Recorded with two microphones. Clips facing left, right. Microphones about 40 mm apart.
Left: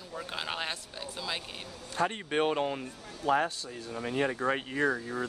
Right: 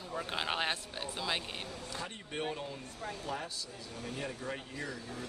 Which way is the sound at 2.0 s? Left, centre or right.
Left.